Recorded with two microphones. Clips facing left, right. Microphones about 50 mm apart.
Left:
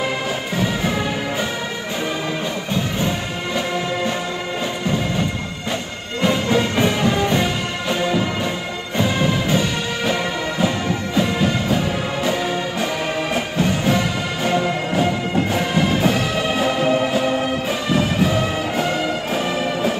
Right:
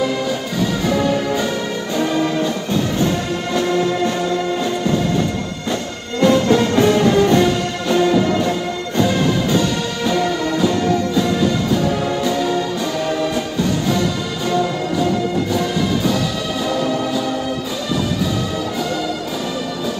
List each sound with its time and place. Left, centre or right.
0.6 s music: left
2.7 s music: centre
6.2 s music: centre; by 18.9 s left